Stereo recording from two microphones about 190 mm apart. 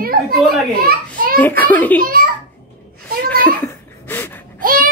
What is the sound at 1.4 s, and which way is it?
Speech, 10° left (ahead or behind).